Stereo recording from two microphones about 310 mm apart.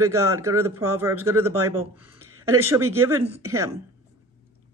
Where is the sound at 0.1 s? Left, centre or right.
Centre.